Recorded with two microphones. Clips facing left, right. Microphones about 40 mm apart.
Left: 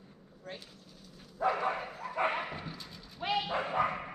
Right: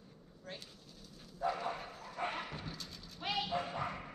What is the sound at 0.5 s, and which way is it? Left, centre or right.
Speech, centre.